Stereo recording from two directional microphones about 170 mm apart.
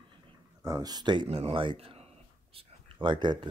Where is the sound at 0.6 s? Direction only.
20° right (ahead or behind).